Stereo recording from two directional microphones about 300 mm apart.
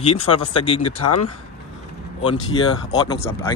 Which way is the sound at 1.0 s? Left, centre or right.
Left.